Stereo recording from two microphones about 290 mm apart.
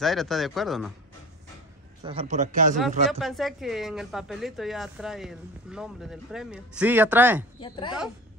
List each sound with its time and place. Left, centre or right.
0.0 s speech: centre
2.0 s a man's voice: right
3.1 s speech: centre
7.6 s a woman's voice: centre